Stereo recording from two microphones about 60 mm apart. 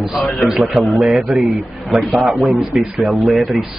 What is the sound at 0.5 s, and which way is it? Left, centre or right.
Speech, right.